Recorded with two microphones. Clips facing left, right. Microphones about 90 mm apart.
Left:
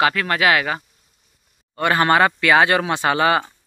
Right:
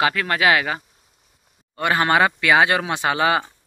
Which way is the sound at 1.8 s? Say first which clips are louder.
Left 2 dB; 15° right (ahead or behind).